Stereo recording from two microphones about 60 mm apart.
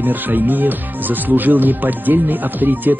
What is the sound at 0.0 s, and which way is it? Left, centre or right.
Speech, right.